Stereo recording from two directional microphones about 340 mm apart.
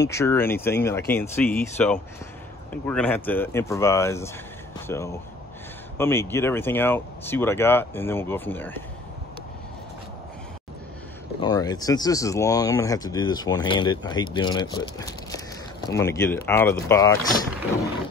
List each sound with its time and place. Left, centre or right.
0.0 s speech: centre
11.4 s speech: centre